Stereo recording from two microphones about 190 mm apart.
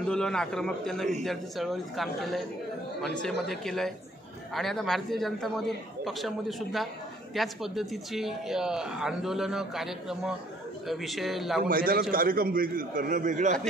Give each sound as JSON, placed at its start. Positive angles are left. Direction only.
{"t": 0.0, "sound": "speech", "side_deg": 5}
{"t": 11.6, "sound": "a man's voice", "side_deg": -50}